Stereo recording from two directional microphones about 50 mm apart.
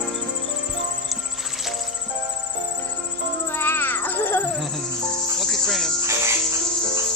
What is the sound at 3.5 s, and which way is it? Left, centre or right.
Music, left.